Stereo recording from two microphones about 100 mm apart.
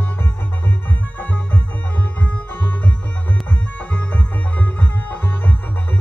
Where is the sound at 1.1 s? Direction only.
20° left (ahead or behind).